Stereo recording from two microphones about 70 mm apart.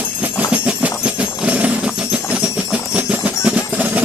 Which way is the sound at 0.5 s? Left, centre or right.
Centre.